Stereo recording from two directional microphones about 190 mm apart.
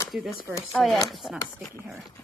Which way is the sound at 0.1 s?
5° right (ahead or behind).